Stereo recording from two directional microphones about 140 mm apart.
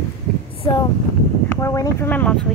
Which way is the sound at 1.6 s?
20° left (ahead or behind).